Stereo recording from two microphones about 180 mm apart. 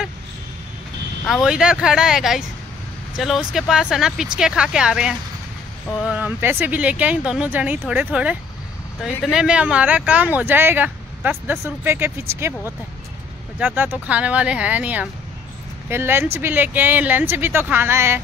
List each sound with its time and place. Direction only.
1.2 s speech: centre (ahead or behind)
13.6 s speech: 10° right (ahead or behind)